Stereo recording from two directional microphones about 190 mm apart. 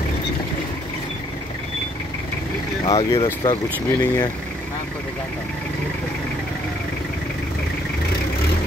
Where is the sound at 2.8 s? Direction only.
30° left (ahead or behind).